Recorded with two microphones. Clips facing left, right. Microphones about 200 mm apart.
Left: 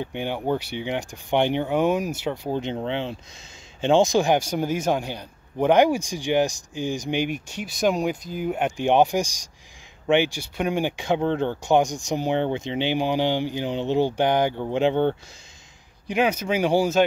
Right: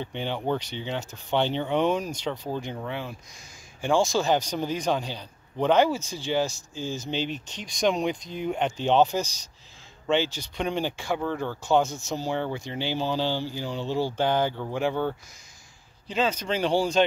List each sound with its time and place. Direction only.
0.0 s speech: 10° left (ahead or behind)
2.5 s speech: 20° left (ahead or behind)
16.1 s speech: 10° left (ahead or behind)